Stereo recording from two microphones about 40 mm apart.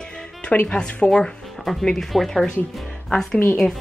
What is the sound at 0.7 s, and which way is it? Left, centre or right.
Speech, left.